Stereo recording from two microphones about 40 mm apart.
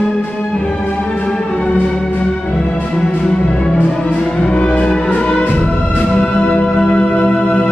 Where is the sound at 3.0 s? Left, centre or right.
Centre.